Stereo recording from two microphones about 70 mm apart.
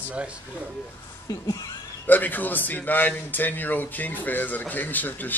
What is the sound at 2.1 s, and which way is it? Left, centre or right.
Speech, left.